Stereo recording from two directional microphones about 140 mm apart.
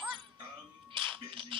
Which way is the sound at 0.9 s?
35° right (ahead or behind).